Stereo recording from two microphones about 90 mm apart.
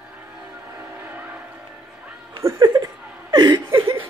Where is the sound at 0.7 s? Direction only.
25° right (ahead or behind).